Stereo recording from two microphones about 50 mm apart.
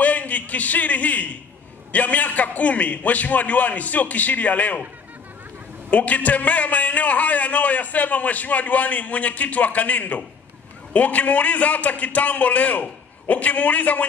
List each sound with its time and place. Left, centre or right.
0.0 s a man's voice: left
5.9 s a man's voice: left